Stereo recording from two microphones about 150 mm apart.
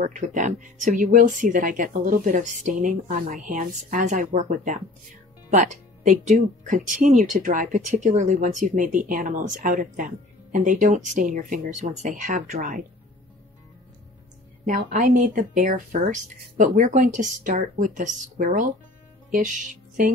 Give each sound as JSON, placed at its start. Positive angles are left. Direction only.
{"t": 0.0, "sound": "speech", "side_deg": -55}
{"t": 12.2, "sound": "speech", "side_deg": -60}
{"t": 14.7, "sound": "speech", "side_deg": -60}